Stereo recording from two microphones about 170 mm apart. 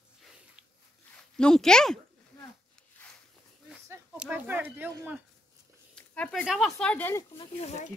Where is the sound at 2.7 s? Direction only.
10° left (ahead or behind).